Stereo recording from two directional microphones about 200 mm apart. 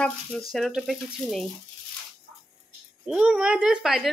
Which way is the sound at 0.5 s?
Centre (ahead or behind).